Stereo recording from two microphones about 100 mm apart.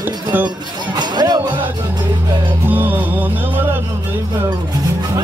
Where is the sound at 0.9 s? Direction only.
45° right (ahead or behind).